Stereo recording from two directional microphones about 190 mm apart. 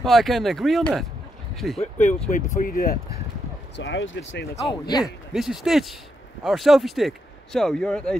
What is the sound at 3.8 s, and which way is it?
Speech, 65° left (ahead or behind).